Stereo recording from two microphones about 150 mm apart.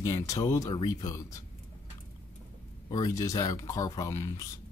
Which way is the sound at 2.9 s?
25° left (ahead or behind).